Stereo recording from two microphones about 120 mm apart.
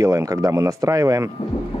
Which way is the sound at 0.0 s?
25° right (ahead or behind).